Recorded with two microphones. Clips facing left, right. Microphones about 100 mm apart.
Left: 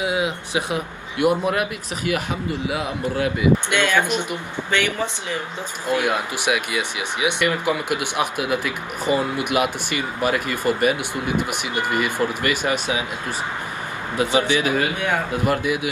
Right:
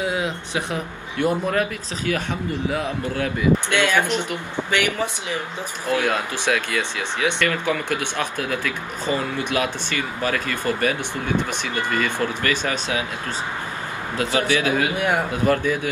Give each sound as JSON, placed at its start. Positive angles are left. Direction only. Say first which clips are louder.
{"t": 0.0, "sound": "speech", "louder": "left 1 dB", "side_deg": 15}
{"t": 4.6, "sound": "speech", "louder": "even", "side_deg": -15}
{"t": 5.9, "sound": "speech", "louder": "even", "side_deg": 15}
{"t": 14.1, "sound": "a man's voice", "louder": "left 2 dB", "side_deg": 20}